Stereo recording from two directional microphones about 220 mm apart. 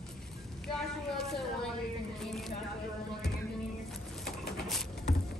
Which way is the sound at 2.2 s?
Centre (ahead or behind).